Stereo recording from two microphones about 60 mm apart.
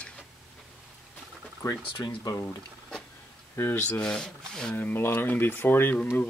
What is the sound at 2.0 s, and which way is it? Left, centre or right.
Speech, left.